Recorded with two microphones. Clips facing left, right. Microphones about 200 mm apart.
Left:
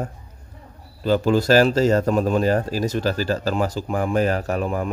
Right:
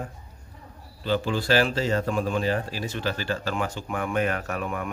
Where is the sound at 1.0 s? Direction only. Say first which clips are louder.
Left 7 dB; 45° left (ahead or behind).